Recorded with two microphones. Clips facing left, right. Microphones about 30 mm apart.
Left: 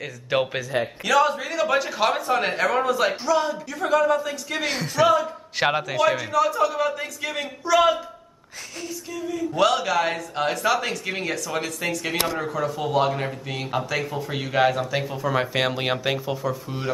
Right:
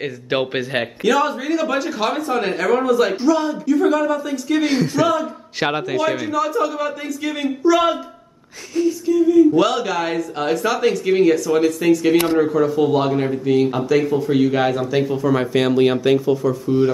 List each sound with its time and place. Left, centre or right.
0.4 s a man's voice: right
1.0 s speech: centre